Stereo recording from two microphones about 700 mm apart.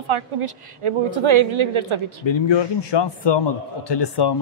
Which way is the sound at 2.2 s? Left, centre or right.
Left.